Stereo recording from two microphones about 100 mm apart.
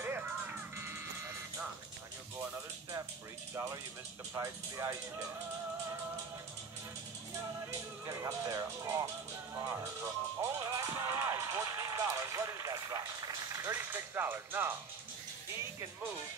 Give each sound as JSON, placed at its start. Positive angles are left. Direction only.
{"t": 0.0, "sound": "music", "side_deg": -20}
{"t": 4.3, "sound": "speech", "side_deg": -30}
{"t": 8.0, "sound": "speech", "side_deg": -35}
{"t": 9.6, "sound": "music", "side_deg": -35}
{"t": 13.7, "sound": "speech", "side_deg": -20}